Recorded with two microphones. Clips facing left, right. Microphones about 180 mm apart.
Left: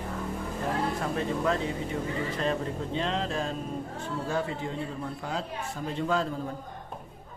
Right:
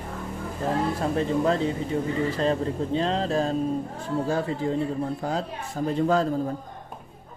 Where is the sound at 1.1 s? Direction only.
30° right (ahead or behind).